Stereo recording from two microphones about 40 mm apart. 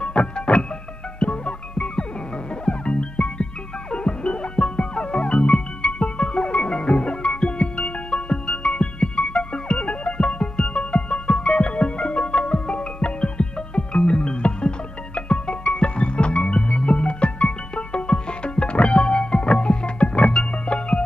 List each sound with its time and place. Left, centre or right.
0.0 s music: left